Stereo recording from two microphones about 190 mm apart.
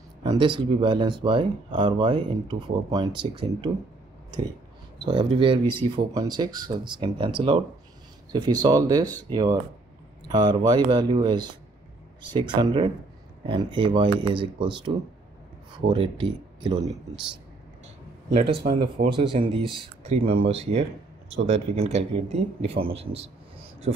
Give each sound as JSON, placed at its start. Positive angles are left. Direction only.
{"t": 0.2, "sound": "speech", "side_deg": -25}
{"t": 5.0, "sound": "speech", "side_deg": -25}
{"t": 15.9, "sound": "speech", "side_deg": -25}
{"t": 18.6, "sound": "speech", "side_deg": -55}
{"t": 19.1, "sound": "speech", "side_deg": -25}